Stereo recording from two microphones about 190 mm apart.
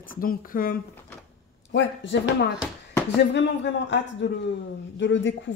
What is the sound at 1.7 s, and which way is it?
Speech, 75° left (ahead or behind).